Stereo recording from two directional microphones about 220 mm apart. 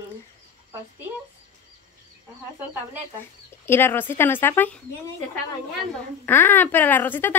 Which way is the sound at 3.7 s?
10° left (ahead or behind).